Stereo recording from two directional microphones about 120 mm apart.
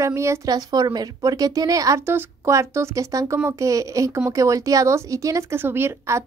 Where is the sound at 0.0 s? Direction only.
25° right (ahead or behind).